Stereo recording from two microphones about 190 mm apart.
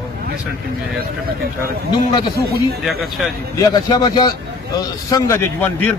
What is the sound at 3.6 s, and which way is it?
A man's voice, 20° left (ahead or behind).